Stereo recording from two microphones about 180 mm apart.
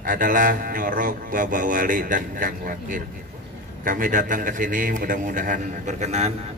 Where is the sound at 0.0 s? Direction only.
50° right (ahead or behind).